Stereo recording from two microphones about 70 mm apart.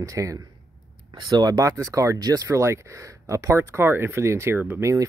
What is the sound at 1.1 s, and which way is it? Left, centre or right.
Speech, right.